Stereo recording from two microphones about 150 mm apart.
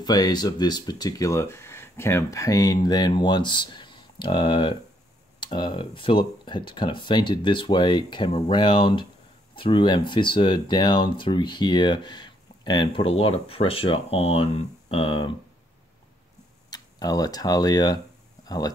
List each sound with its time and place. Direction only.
0.0 s speech: 25° left (ahead or behind)
16.7 s speech: 25° left (ahead or behind)